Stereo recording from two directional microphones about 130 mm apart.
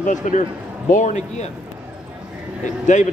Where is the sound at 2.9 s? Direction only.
70° left (ahead or behind).